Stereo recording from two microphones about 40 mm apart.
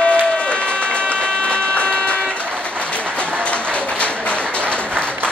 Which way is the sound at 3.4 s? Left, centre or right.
Left.